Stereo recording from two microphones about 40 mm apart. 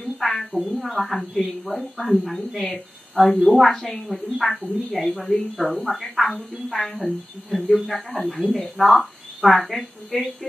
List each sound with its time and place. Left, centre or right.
0.0 s a sound: centre
0.6 s a woman's voice: centre
2.3 s a woman's voice: centre